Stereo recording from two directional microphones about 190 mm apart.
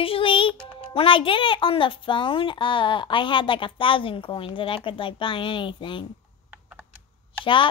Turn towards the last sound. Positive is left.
turn(degrees=25)  # may be behind; listen again after turning